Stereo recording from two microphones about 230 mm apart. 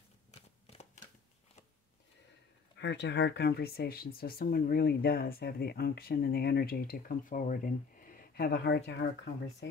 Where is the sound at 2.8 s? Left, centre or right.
Left.